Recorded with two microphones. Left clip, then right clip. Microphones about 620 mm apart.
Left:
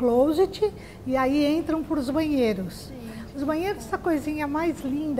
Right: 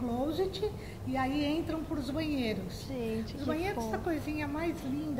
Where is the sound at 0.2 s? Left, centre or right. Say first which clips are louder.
Left 11 dB; left.